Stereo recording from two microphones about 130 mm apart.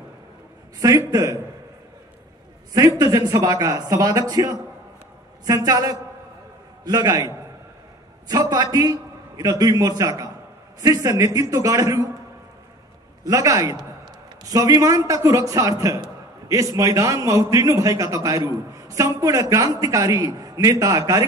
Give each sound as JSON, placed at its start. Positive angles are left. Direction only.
{"t": 0.7, "sound": "a man's voice", "side_deg": -25}
{"t": 3.0, "sound": "a man's voice", "side_deg": -30}
{"t": 13.2, "sound": "a man's voice", "side_deg": -25}